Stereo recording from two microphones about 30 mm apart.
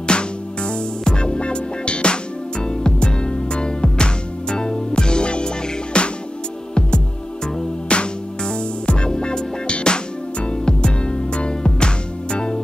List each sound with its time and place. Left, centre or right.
0.0 s music: left
7.9 s music: left